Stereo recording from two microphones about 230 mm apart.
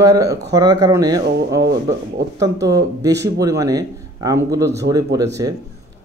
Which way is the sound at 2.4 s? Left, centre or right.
Centre.